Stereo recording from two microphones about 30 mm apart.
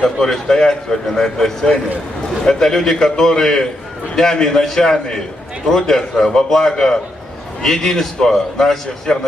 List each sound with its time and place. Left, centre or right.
0.0 s a man's voice: centre